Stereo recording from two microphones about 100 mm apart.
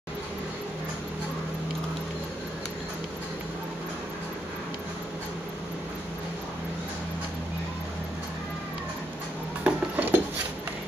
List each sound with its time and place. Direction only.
9.6 s dishes: 15° right (ahead or behind)